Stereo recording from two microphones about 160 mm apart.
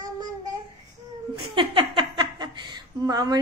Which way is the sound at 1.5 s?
30° right (ahead or behind).